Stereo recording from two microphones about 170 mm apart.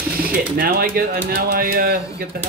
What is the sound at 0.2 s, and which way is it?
Speech, 60° right (ahead or behind).